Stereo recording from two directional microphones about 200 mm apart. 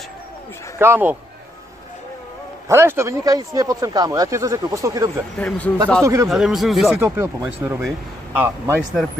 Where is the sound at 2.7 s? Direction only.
15° right (ahead or behind).